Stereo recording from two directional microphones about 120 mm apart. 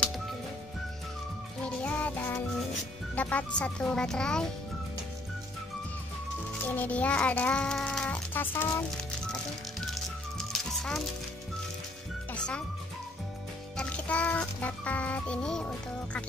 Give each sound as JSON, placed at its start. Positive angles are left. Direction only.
{"t": 1.6, "sound": "music", "side_deg": 10}
{"t": 6.6, "sound": "a child's voice", "side_deg": 15}
{"t": 8.9, "sound": "music", "side_deg": 5}
{"t": 12.3, "sound": "music", "side_deg": 10}
{"t": 13.7, "sound": "music", "side_deg": 10}